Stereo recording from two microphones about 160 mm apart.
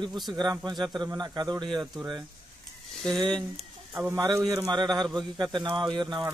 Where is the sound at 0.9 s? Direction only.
25° right (ahead or behind).